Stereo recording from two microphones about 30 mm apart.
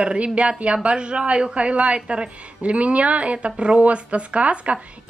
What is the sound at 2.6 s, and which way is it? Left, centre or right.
A woman's voice, right.